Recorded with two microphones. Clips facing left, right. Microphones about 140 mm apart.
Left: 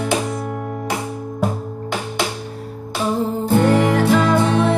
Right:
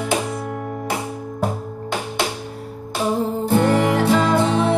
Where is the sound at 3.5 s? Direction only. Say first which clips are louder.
Left 2 dB; centre (ahead or behind).